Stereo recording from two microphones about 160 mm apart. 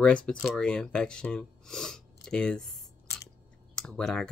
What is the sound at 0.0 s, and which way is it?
Speech, 5° left (ahead or behind).